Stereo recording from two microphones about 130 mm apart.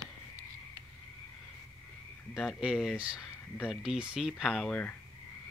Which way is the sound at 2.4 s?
5° right (ahead or behind).